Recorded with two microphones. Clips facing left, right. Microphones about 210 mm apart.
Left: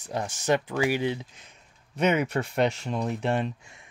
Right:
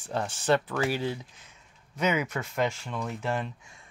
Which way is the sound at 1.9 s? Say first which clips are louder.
Left 3 dB; 60° left (ahead or behind).